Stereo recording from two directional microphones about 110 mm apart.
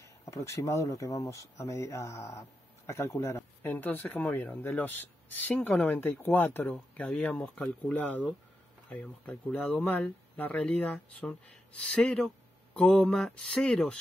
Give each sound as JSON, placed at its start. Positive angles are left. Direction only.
{"t": 0.0, "sound": "speech", "side_deg": 30}
{"t": 3.7, "sound": "speech", "side_deg": 15}